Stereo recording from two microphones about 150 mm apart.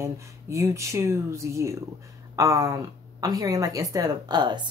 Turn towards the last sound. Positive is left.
turn(degrees=-30)  # may be behind; listen again after turning